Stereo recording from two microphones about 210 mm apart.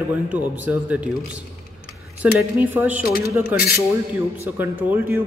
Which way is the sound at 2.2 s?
10° right (ahead or behind).